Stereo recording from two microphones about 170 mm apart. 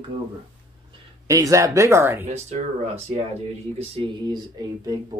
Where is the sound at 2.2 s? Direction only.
40° right (ahead or behind).